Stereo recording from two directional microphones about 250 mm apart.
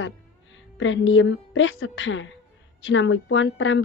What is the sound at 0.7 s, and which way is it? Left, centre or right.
Speech, left.